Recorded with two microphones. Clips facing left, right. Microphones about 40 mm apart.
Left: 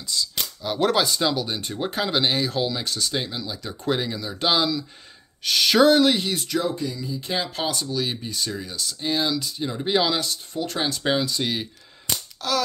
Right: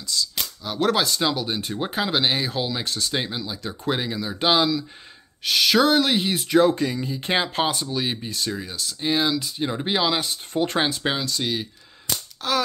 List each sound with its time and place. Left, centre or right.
0.1 s speech: centre
0.6 s speech: centre
1.2 s speech: centre
3.1 s speech: centre
5.4 s speech: centre
6.1 s speech: centre
6.6 s speech: right
7.7 s speech: right
9.0 s speech: centre
9.6 s speech: right
10.5 s speech: right
10.9 s speech: centre
11.1 s speech: centre
12.4 s a sound: centre